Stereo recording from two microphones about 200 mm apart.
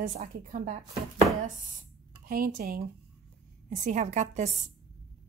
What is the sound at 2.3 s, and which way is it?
A woman's voice, 45° right (ahead or behind).